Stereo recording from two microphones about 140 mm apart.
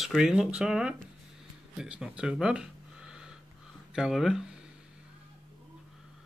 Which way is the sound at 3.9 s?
Centre (ahead or behind).